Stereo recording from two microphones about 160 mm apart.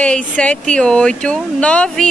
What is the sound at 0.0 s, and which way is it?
Speech, 5° left (ahead or behind).